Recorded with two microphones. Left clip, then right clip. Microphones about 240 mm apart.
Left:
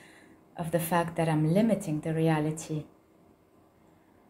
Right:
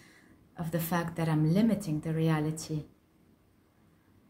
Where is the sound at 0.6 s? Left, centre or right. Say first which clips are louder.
Left 5 dB; centre.